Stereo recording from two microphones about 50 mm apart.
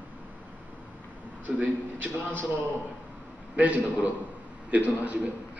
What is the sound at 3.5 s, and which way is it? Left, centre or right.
A man's voice, right.